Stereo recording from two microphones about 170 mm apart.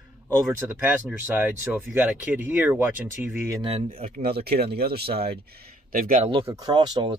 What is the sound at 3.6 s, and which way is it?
Speech, 35° right (ahead or behind).